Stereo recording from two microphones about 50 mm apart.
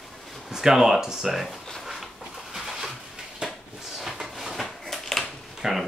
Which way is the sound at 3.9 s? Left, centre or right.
Centre.